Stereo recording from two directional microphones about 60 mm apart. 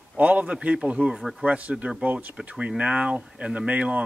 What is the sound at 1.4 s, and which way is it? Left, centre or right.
Speech, right.